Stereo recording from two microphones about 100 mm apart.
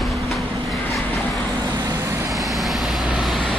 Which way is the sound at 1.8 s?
45° right (ahead or behind).